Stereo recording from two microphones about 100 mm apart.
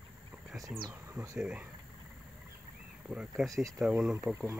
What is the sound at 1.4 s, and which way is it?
Speech, 10° right (ahead or behind).